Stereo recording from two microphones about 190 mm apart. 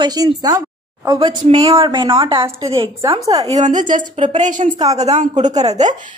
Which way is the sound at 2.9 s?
15° right (ahead or behind).